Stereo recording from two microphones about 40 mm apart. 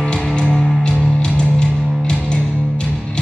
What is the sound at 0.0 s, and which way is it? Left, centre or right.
Music, left.